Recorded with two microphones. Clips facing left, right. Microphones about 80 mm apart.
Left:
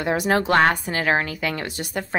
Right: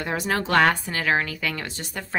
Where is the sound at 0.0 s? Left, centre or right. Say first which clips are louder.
Left 5 dB; left.